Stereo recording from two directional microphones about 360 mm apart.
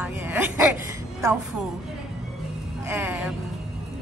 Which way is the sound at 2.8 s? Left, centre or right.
Centre.